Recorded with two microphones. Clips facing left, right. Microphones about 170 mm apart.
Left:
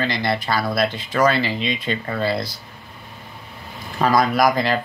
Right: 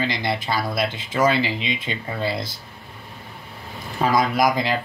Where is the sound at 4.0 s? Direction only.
20° right (ahead or behind).